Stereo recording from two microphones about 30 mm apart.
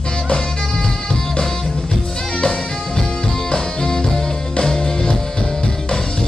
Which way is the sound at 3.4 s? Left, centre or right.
Left.